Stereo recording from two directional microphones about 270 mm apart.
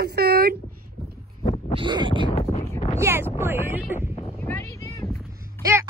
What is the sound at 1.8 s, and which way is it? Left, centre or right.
Speech, centre.